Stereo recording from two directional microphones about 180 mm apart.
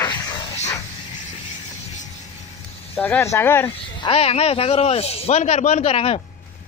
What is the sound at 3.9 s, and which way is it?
Speech, 30° left (ahead or behind).